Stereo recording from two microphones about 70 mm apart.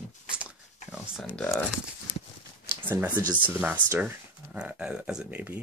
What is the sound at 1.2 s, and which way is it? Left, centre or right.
Speech, centre.